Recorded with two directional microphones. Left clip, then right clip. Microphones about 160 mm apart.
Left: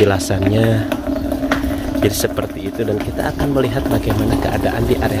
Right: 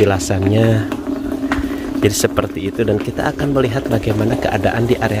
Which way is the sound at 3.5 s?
25° right (ahead or behind).